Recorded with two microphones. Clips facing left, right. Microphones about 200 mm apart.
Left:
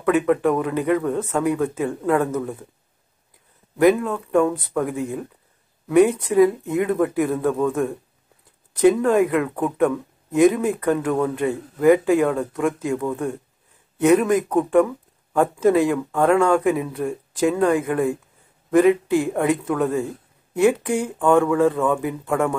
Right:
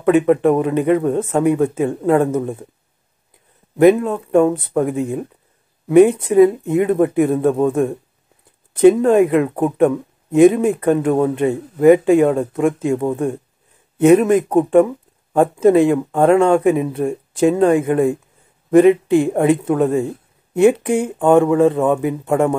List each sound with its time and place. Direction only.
0.0 s speech: 25° right (ahead or behind)
3.7 s speech: 25° right (ahead or behind)